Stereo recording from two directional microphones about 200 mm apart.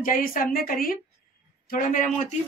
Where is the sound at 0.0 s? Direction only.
45° left (ahead or behind).